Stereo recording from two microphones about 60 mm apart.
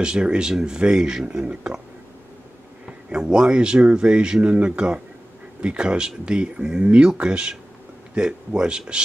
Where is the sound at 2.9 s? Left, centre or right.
Centre.